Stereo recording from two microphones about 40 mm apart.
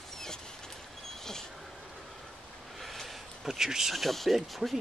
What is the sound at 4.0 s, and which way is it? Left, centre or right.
Speech, centre.